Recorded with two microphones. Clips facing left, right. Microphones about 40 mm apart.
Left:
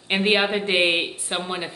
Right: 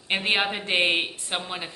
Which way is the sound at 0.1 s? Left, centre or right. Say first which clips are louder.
Left 4 dB; centre.